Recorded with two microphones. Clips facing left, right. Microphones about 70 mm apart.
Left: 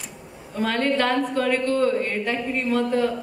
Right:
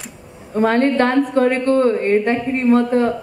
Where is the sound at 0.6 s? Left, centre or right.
Right.